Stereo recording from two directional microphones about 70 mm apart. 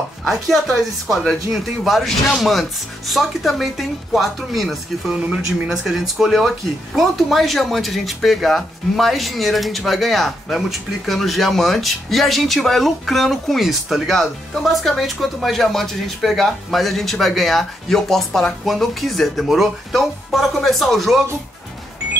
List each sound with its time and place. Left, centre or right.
0.2 s speech: centre
5.1 s speech: centre
5.7 s speech: centre